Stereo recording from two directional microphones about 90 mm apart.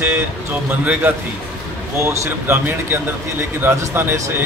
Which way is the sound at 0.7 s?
20° right (ahead or behind).